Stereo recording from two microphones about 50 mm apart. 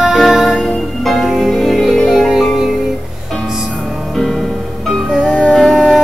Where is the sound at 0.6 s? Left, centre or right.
Centre.